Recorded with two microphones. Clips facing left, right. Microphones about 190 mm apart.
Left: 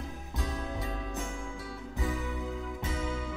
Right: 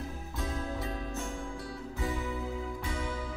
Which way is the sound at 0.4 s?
Centre (ahead or behind).